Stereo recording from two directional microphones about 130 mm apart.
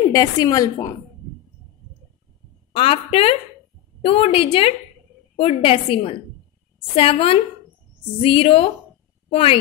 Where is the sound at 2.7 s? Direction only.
45° left (ahead or behind).